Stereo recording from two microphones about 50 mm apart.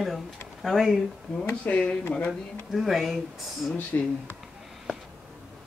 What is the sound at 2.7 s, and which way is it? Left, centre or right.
Speech, centre.